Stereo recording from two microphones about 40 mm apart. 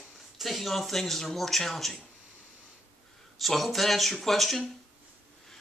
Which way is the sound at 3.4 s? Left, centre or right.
Centre.